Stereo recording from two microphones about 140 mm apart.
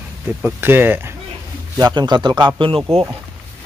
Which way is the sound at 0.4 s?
10° right (ahead or behind).